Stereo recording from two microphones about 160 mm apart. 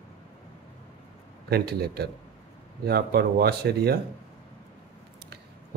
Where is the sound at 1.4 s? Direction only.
80° right.